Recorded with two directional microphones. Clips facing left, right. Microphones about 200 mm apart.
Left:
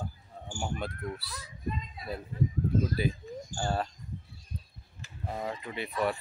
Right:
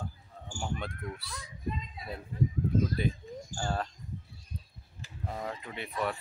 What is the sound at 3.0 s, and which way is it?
Speech, 5° left (ahead or behind).